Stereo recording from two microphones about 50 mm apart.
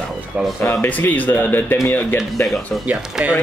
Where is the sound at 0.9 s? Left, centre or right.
Left.